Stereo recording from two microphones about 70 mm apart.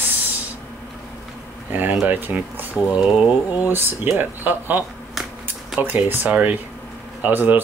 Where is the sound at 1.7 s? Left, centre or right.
Right.